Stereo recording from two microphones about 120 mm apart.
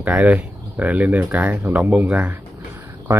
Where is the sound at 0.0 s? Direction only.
10° right (ahead or behind).